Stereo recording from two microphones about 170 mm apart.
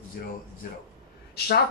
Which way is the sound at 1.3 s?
70° left (ahead or behind).